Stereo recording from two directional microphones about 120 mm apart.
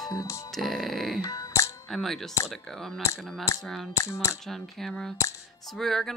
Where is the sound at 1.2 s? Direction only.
30° left (ahead or behind).